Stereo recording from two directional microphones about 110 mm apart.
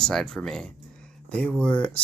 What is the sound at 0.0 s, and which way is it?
Speech, 5° left (ahead or behind).